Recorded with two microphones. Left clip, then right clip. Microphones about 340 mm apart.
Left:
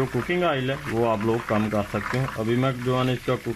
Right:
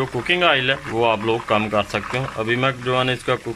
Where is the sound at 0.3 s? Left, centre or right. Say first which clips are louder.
Right 9 dB; right.